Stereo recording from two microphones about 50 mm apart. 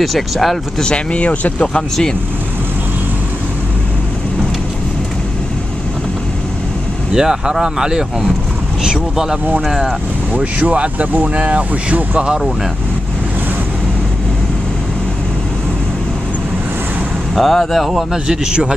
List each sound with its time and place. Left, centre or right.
0.0 s speech: centre
0.8 s speech: left
7.2 s speech: centre
10.7 s speech: right
17.4 s speech: centre
18.1 s speech: centre